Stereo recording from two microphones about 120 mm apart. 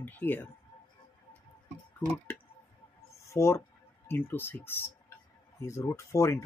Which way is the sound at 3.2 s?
25° left (ahead or behind).